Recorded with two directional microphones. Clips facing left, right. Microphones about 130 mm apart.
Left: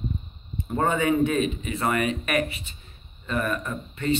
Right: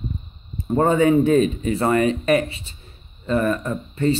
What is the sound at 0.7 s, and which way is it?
Speech, 30° right (ahead or behind).